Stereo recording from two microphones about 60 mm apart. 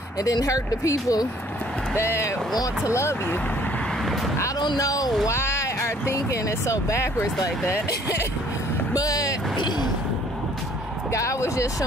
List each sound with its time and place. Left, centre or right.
0.2 s speech: left
2.0 s speech: left
2.5 s speech: left
2.9 s speech: left
4.4 s speech: left
5.2 s a sound: left
6.1 s speech: left
8.9 s speech: left
11.1 s speech: left